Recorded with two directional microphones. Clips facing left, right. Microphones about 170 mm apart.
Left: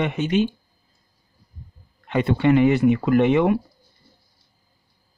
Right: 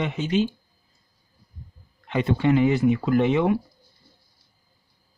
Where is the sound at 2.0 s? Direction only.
60° left (ahead or behind).